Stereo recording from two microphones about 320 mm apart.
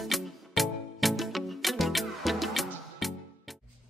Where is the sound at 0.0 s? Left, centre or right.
Centre.